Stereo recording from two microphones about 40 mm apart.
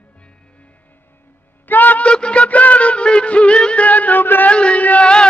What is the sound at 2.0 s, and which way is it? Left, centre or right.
Music, left.